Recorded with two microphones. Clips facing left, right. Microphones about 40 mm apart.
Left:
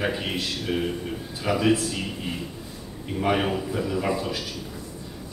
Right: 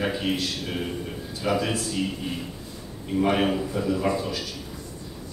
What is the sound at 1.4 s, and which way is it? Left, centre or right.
Speech, left.